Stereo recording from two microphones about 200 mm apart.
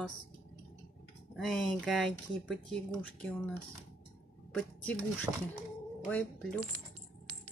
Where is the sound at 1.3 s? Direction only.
Centre (ahead or behind).